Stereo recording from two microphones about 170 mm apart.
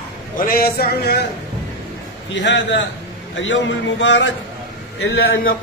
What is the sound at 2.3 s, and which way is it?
A man's voice, 90° left.